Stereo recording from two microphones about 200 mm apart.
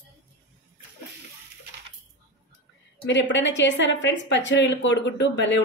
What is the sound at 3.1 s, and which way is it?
Speech, 65° left (ahead or behind).